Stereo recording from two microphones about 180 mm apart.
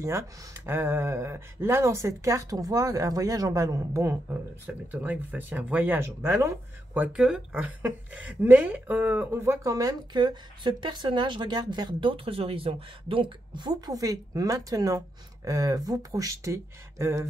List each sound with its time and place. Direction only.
0.0 s speech: 15° right (ahead or behind)